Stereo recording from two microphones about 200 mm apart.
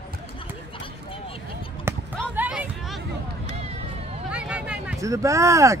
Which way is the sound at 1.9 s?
10° right (ahead or behind).